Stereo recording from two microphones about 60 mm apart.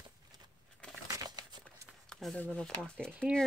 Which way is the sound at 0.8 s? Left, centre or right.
Left.